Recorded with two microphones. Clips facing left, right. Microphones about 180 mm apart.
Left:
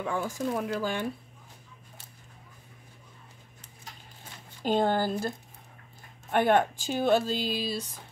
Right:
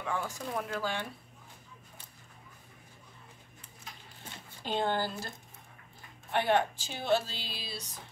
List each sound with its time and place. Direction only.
0.0 s speech: 45° left (ahead or behind)
4.6 s speech: 45° left (ahead or behind)
6.3 s speech: 50° left (ahead or behind)